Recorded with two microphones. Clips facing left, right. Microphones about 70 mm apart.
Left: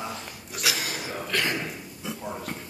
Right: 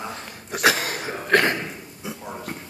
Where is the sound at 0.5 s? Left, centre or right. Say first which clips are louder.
Right 9 dB; right.